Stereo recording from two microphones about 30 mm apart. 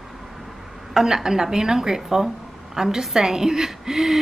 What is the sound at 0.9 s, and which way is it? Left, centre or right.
A woman's voice, right.